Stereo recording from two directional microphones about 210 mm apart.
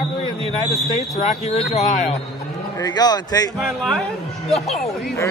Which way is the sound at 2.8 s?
20° left (ahead or behind).